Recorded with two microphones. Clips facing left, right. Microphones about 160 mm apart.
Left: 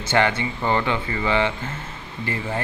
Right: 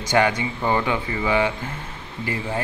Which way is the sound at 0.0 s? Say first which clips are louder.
Right 1 dB; 15° right (ahead or behind).